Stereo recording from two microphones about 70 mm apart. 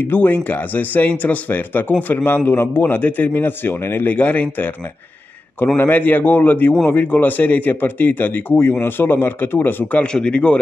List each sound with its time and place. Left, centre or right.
0.0 s speech: left
5.8 s speech: left
10.0 s speech: centre